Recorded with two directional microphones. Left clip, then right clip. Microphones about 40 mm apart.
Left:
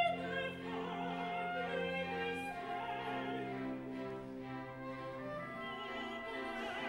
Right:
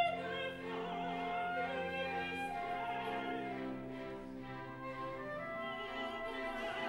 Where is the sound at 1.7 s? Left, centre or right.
Centre.